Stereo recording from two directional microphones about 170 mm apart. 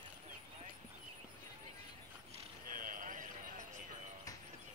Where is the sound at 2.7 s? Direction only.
50° right (ahead or behind).